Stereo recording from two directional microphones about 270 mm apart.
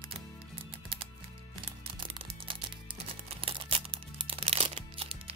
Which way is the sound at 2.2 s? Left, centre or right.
Centre.